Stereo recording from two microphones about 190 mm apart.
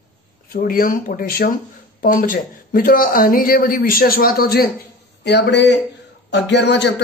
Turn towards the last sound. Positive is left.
turn(degrees=65)  # may be behind; listen again after turning